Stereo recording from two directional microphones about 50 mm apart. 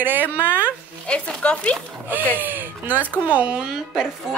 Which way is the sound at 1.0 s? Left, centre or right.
Left.